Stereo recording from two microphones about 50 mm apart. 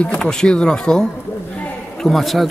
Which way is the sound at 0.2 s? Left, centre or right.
Centre.